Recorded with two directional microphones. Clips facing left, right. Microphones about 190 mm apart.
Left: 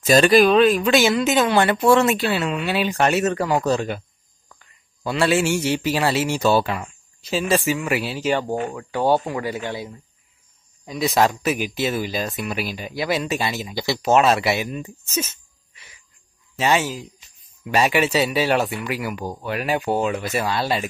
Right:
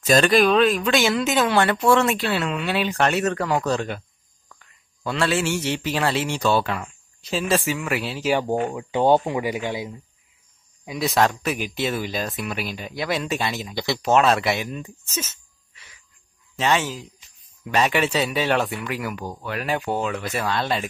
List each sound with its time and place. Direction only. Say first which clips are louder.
0.0 s a man's voice: left 3 dB; 5° left (ahead or behind)
8.4 s speech: right 1 dB; 15° right (ahead or behind)
11.0 s speech: left 2 dB; centre (ahead or behind)
16.5 s speech: left 2 dB; 10° left (ahead or behind)